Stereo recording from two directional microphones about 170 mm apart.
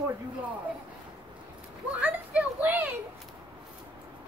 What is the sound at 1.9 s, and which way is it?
Speech, 10° right (ahead or behind).